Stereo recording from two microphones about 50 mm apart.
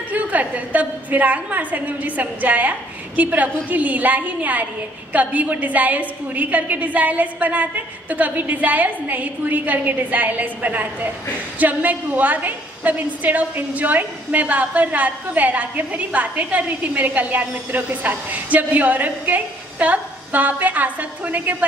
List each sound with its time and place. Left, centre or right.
0.1 s a woman's voice: right